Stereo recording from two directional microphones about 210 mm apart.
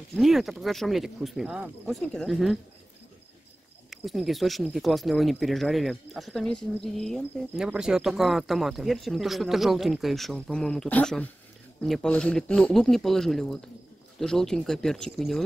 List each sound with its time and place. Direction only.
0.1 s speech: centre (ahead or behind)
3.9 s speech: centre (ahead or behind)